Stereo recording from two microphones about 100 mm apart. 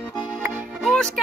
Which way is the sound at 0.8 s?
5° left (ahead or behind).